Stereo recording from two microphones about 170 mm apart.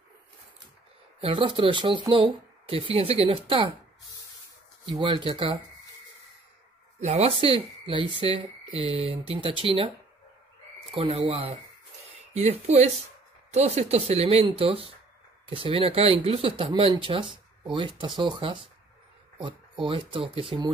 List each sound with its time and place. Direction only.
1.2 s speech: 30° right (ahead or behind)
5.0 s speech: 30° right (ahead or behind)
7.0 s speech: 40° right (ahead or behind)